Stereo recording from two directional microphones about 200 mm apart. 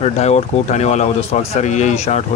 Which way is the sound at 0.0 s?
35° left (ahead or behind).